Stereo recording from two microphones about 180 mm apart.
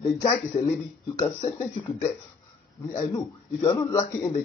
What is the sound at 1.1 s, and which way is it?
Speech, 20° left (ahead or behind).